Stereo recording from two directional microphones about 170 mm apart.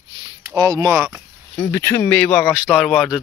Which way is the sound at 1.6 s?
15° left (ahead or behind).